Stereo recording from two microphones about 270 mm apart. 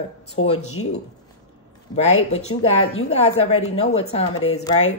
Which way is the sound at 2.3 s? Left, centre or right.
Left.